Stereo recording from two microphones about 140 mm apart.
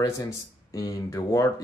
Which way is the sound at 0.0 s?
25° left (ahead or behind).